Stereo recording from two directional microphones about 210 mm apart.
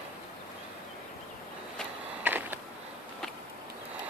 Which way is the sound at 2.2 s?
10° right (ahead or behind).